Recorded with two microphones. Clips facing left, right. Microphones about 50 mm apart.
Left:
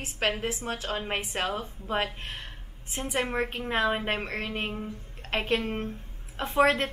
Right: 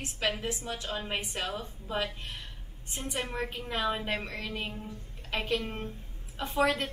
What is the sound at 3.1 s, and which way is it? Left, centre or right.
A woman's voice, left.